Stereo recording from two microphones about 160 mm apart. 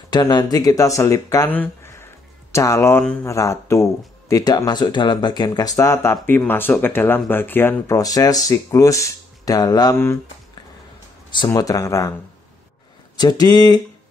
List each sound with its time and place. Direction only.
0.1 s speech: 25° left (ahead or behind)
11.3 s speech: 20° left (ahead or behind)
13.1 s speech: 25° left (ahead or behind)